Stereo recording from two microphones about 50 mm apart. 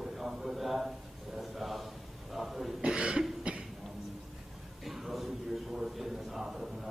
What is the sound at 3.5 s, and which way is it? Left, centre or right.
Cough, right.